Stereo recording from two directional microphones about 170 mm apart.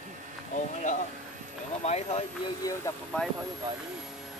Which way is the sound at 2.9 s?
20° left (ahead or behind).